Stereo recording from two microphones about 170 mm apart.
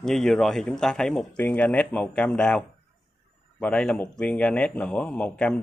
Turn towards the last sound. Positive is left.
turn(degrees=5)  # may be behind; listen again after turning